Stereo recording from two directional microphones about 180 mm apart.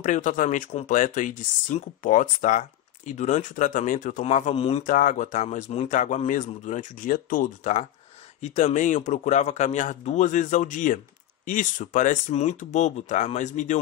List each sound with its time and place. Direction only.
0.0 s speech: 45° left (ahead or behind)